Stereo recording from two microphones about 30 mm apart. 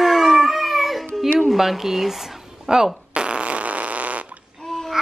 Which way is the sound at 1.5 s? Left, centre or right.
Centre.